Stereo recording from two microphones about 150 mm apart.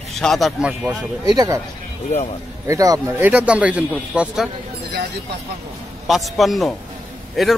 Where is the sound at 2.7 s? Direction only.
20° right (ahead or behind); by 4.5 s 5° right (ahead or behind).